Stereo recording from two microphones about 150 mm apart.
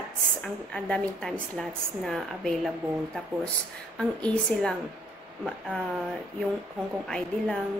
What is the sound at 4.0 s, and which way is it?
Speech, 5° left (ahead or behind).